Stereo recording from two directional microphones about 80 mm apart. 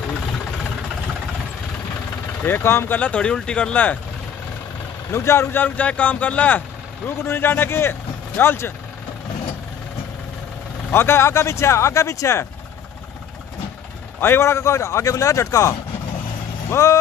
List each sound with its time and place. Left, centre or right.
2.4 s speech: left
3.0 s speech: centre
5.1 s speech: left
10.9 s speech: left
14.2 s speech: left
16.8 s speech: left